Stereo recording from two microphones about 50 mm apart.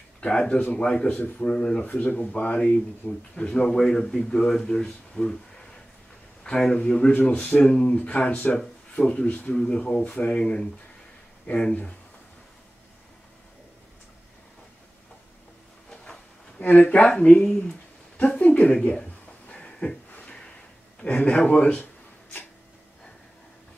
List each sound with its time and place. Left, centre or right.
0.2 s speech: centre
1.1 s a man's voice: left
1.5 s speech: centre
3.1 s speech: centre
6.5 s speech: centre
9.6 s speech: centre
10.0 s a man's voice: left
10.3 s speech: centre
16.7 s speech: left
18.4 s a sound: left
18.7 s speech: centre
19.5 s a sound: centre
20.1 s a sound: left
21.0 s a man's voice: left